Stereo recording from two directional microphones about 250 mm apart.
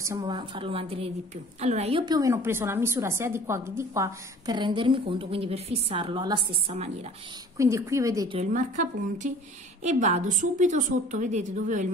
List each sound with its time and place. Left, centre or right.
0.0 s a woman's voice: centre
7.5 s a woman's voice: centre
8.4 s a woman's voice: right